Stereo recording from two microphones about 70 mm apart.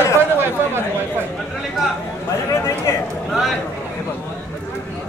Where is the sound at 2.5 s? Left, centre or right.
Left.